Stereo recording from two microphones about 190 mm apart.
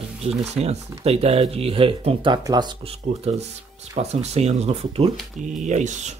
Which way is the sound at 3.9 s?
35° right (ahead or behind).